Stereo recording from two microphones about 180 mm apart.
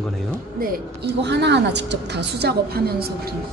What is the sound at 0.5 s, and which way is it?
Speech, 55° right (ahead or behind).